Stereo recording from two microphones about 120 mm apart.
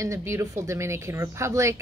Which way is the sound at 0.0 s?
25° right (ahead or behind).